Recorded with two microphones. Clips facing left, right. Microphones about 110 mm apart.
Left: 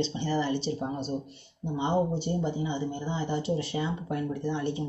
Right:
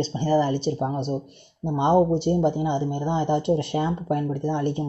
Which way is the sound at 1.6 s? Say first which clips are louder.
Right 8 dB; 75° right (ahead or behind).